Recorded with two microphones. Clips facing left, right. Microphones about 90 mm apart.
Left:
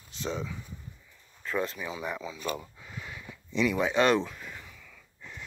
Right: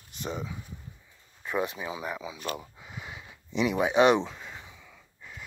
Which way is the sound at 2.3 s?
15° right (ahead or behind).